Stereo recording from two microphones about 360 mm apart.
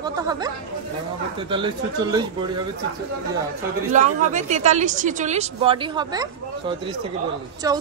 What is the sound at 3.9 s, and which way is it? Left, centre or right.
A woman's voice, centre.